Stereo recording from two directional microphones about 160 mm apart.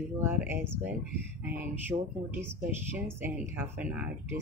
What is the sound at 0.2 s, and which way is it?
Speech, 15° right (ahead or behind).